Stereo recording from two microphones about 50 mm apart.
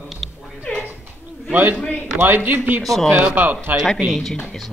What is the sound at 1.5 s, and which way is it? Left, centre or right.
A man's voice, right.